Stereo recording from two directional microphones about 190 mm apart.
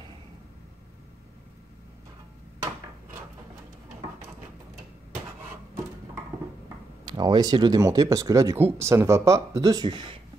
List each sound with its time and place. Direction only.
7.1 s speech: 20° right (ahead or behind)